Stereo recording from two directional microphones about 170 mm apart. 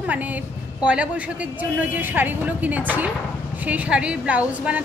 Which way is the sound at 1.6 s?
10° right (ahead or behind).